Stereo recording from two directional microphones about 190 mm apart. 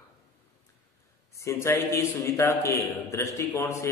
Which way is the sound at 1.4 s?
15° left (ahead or behind).